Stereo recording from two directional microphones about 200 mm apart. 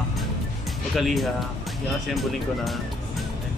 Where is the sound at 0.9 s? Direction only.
Centre (ahead or behind).